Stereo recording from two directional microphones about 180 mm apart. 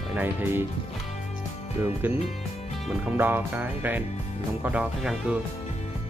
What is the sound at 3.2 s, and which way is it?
Speech, 10° right (ahead or behind).